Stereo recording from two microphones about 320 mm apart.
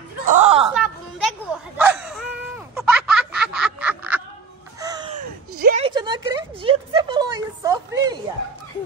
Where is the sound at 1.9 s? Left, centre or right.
Centre.